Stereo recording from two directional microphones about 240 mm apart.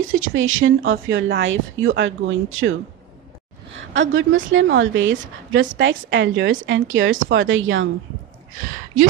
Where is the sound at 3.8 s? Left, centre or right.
Right.